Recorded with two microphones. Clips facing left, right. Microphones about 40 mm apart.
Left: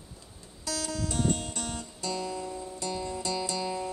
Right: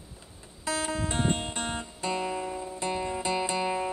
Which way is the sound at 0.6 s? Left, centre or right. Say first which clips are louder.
Right 3 dB; right.